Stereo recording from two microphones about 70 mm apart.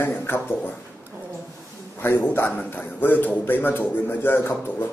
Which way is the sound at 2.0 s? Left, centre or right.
Left.